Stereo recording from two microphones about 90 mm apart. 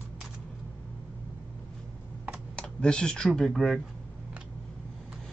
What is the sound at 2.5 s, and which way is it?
Speech, 10° left (ahead or behind).